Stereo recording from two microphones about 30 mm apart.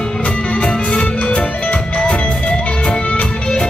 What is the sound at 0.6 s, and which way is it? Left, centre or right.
Music, left.